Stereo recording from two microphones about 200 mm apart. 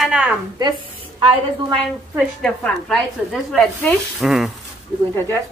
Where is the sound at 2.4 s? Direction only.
Centre (ahead or behind).